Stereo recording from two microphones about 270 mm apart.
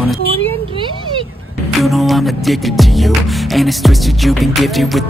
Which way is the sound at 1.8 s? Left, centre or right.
Centre.